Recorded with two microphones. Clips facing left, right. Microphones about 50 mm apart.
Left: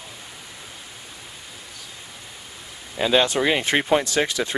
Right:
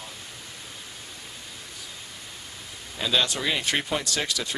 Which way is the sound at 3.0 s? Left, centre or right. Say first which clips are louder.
Left 6 dB; left.